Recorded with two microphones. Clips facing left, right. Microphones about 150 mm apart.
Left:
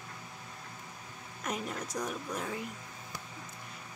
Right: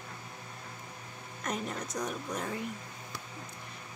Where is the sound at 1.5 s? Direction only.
5° left (ahead or behind).